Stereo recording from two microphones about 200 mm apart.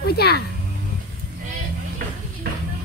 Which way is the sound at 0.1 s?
50° left (ahead or behind).